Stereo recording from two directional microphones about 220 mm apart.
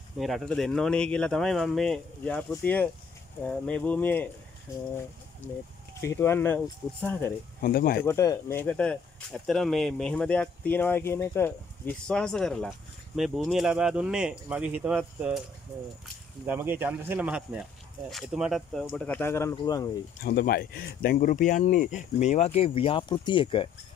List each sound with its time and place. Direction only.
0.2 s speech: centre (ahead or behind)
5.9 s speech: 10° left (ahead or behind)
7.6 s speech: 40° left (ahead or behind)
8.0 s speech: 15° left (ahead or behind); by 15.4 s 5° right (ahead or behind)
16.4 s speech: 10° right (ahead or behind); by 19.9 s 15° left (ahead or behind)
20.2 s speech: 45° left (ahead or behind); by 23.7 s 25° left (ahead or behind)